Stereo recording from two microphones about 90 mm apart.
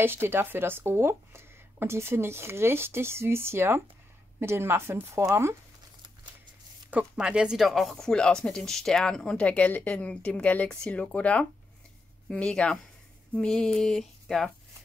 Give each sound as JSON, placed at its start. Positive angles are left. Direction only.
{"t": 0.0, "sound": "speech", "side_deg": -25}
{"t": 6.9, "sound": "speech", "side_deg": -15}
{"t": 13.3, "sound": "a sound", "side_deg": 10}